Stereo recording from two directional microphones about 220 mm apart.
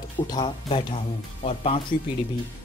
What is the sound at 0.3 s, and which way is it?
Speech, 20° left (ahead or behind).